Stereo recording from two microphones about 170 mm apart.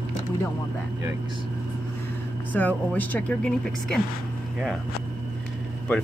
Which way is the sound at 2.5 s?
10° left (ahead or behind).